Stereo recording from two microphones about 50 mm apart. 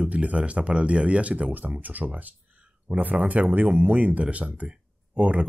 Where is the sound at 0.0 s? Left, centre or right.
Right.